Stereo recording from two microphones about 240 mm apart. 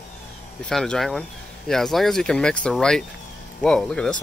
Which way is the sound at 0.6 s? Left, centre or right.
Centre.